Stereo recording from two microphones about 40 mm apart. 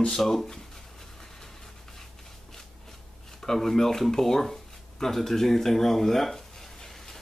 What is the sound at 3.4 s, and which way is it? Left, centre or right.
Speech, centre.